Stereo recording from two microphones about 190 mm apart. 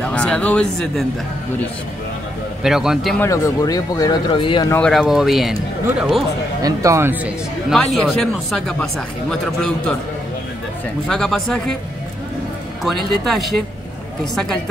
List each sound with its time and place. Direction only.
0.0 s speech: 5° left (ahead or behind)
2.6 s speech: centre (ahead or behind)
3.2 s speech: 15° left (ahead or behind)
4.7 s speech: 5° left (ahead or behind)
6.6 s speech: 15° right (ahead or behind)
7.7 s speech: centre (ahead or behind)
11.1 s speech: centre (ahead or behind)
12.8 s speech: centre (ahead or behind)